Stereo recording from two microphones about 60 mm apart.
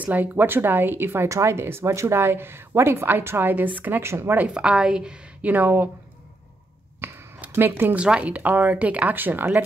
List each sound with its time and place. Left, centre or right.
0.0 s speech: right
1.3 s speech: right
4.0 s speech: right
4.6 s a woman's voice: centre
5.4 s speech: right
7.0 s a sound: right
7.5 s speech: right
7.9 s speech: centre